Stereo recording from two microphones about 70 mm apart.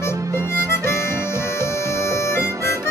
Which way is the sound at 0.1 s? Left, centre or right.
Right.